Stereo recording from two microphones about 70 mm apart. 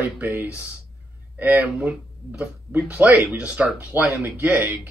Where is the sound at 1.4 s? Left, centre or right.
Right.